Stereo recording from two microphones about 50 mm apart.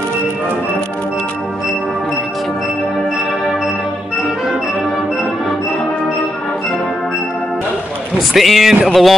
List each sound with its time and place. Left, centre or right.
8.2 s speech: centre